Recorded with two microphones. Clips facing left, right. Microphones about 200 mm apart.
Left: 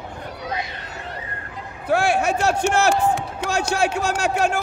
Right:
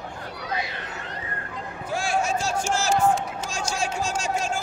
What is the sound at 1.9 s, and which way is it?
Speech, 65° left (ahead or behind).